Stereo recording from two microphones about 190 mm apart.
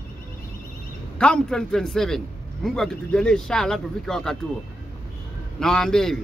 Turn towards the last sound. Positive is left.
turn(degrees=5)  # may be behind; listen again after turning